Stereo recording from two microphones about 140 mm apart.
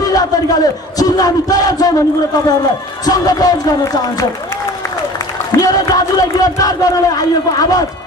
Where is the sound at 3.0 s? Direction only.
25° left (ahead or behind).